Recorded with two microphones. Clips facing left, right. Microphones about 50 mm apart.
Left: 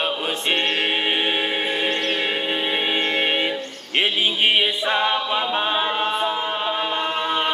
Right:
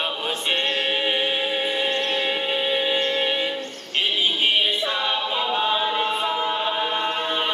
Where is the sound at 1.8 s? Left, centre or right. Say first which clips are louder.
Left 1 dB; left.